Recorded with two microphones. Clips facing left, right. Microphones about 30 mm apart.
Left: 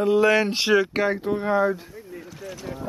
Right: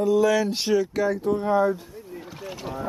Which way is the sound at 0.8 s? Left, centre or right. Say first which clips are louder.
Left 1 dB; left.